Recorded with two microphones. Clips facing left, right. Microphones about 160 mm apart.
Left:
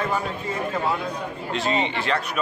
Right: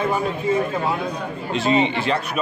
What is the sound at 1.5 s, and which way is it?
Speech, 5° right (ahead or behind).